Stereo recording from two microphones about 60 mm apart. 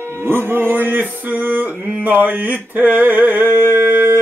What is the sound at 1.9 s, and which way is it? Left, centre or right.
Male singing, right.